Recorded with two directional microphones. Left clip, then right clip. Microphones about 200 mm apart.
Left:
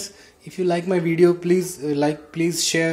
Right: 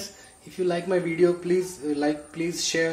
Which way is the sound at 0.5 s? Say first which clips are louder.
Left 4 dB; 35° left (ahead or behind).